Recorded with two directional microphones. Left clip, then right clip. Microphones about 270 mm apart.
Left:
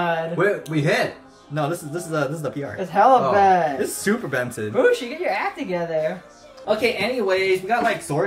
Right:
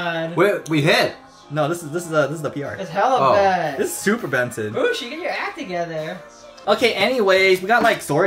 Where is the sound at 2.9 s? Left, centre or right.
Centre.